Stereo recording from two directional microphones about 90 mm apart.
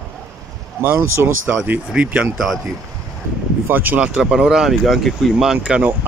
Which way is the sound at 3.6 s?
20° right (ahead or behind).